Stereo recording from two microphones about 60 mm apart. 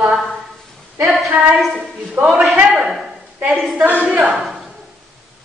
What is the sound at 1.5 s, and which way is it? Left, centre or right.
A woman's voice, centre.